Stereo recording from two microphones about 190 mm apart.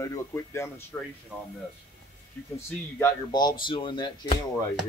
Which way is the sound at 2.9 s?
20° left (ahead or behind).